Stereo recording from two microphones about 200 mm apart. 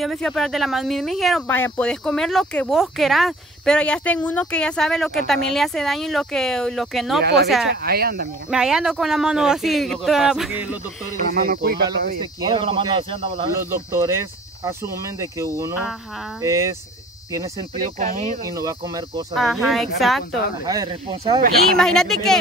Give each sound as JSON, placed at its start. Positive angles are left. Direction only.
{"t": 0.0, "sound": "speech", "side_deg": 0}
{"t": 7.7, "sound": "speech", "side_deg": -50}
{"t": 8.5, "sound": "speech", "side_deg": -5}
{"t": 11.1, "sound": "speech", "side_deg": -45}
{"t": 12.2, "sound": "speech", "side_deg": -20}
{"t": 13.7, "sound": "speech", "side_deg": -10}
{"t": 17.8, "sound": "speech", "side_deg": -40}
{"t": 18.4, "sound": "speech", "side_deg": -15}
{"t": 19.3, "sound": "speech", "side_deg": 0}
{"t": 20.6, "sound": "speech", "side_deg": -20}
{"t": 21.7, "sound": "speech", "side_deg": 5}